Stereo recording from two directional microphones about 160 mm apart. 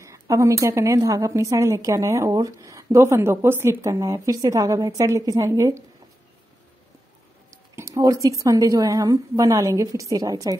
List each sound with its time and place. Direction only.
0.0 s a woman's voice: 20° right (ahead or behind)
7.5 s a woman's voice: 20° right (ahead or behind)